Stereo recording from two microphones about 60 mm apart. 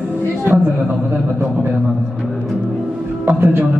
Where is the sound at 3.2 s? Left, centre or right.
Right.